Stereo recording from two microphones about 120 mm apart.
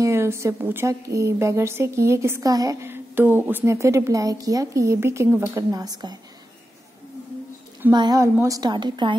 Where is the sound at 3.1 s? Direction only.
15° right (ahead or behind); by 6.1 s 30° right (ahead or behind).